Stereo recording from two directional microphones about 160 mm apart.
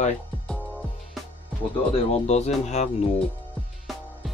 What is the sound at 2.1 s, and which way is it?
Speech, 45° left (ahead or behind).